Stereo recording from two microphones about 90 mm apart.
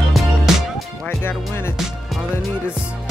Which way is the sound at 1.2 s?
25° left (ahead or behind).